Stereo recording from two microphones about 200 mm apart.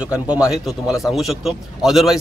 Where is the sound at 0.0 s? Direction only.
5° right (ahead or behind).